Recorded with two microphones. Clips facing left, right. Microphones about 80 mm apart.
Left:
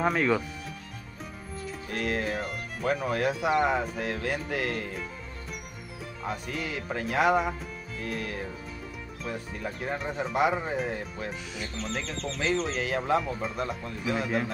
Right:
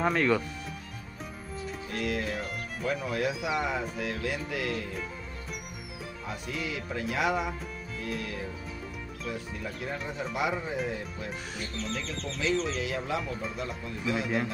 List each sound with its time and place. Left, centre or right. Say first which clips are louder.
0.0 s speech: left 1 dB; centre
1.9 s music: left 2 dB; left
6.4 s music: left 1 dB; left